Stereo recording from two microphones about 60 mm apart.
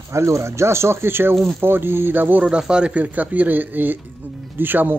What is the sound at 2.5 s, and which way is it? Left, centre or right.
Speech, centre.